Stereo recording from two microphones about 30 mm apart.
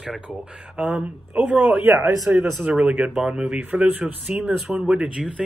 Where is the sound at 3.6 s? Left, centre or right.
Right.